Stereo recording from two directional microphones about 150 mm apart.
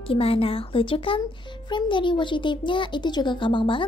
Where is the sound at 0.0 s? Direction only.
40° left (ahead or behind).